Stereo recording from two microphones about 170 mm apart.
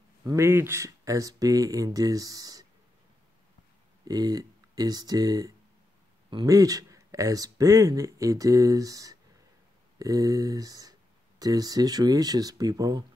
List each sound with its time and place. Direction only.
0.3 s speech: 15° right (ahead or behind)
4.0 s speech: 20° right (ahead or behind)